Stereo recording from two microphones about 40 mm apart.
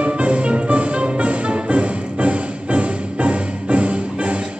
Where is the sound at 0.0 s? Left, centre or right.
Right.